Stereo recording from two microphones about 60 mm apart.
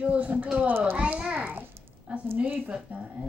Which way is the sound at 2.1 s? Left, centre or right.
Right.